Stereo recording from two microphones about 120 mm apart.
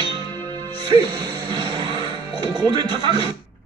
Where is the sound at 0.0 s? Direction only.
35° right (ahead or behind).